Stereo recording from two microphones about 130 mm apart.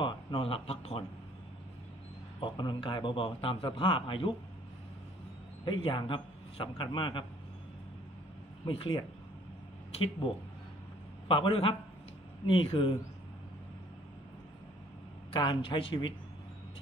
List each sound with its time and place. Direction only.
0.0 s speech: 40° left (ahead or behind)
2.4 s a man's voice: 40° left (ahead or behind)
5.7 s a man's voice: 40° left (ahead or behind)
8.6 s a man's voice: 40° left (ahead or behind)
11.2 s a man's voice: 40° left (ahead or behind)
15.3 s a man's voice: 35° left (ahead or behind)